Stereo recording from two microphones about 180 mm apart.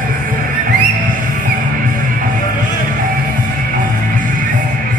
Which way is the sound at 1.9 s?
50° right (ahead or behind).